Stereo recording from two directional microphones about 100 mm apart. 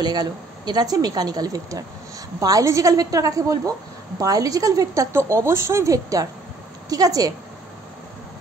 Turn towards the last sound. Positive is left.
turn(degrees=-40)  # may be behind; listen again after turning